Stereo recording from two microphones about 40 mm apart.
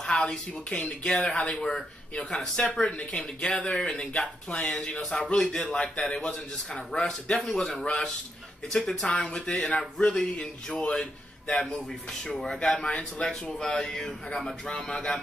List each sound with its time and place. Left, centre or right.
0.0 s a man's voice: left
12.5 s speech: left
13.3 s speech: centre